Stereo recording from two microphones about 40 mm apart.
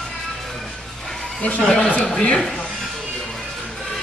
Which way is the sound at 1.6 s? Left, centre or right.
Centre.